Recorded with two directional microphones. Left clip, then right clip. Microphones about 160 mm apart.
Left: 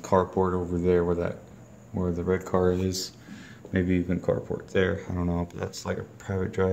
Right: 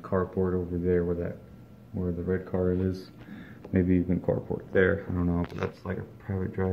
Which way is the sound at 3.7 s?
Centre (ahead or behind).